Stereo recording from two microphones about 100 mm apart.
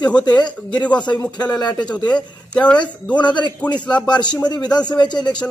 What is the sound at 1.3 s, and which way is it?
Speech, 45° left (ahead or behind).